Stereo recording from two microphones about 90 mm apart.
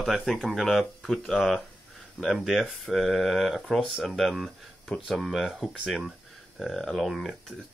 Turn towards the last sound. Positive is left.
turn(degrees=0)  # may be behind; listen again after turning